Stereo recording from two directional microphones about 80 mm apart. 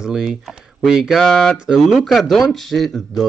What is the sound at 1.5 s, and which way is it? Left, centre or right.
Speech, centre.